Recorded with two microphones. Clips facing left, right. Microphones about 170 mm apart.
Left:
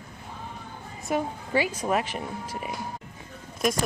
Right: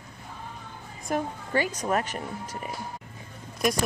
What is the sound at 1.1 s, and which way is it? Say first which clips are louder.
Speech: left 1 dB; 10° left (ahead or behind).